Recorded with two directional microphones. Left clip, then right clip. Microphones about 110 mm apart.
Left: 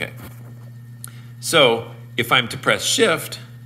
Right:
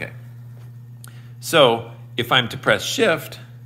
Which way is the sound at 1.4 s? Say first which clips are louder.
Even; 15° right (ahead or behind).